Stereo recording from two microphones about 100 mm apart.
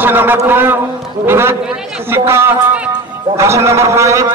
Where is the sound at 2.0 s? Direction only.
25° right (ahead or behind).